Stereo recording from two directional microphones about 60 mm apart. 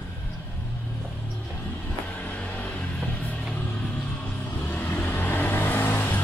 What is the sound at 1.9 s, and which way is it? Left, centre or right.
Music, left.